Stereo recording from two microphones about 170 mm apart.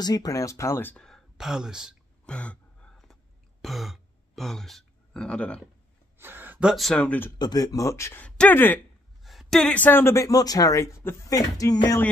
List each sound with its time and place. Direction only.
0.0 s speech: 20° left (ahead or behind); by 5.6 s 5° left (ahead or behind)
6.1 s speech: 10° right (ahead or behind); by 7.3 s 10° left (ahead or behind)
7.3 s speech: 25° left (ahead or behind)
9.2 s speech: centre (ahead or behind); by 12.0 s 20° left (ahead or behind)